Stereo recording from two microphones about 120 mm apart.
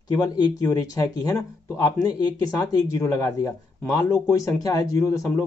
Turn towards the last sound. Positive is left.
turn(degrees=25)  # may be behind; listen again after turning